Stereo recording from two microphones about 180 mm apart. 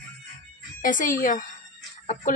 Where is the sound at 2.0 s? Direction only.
50° left (ahead or behind).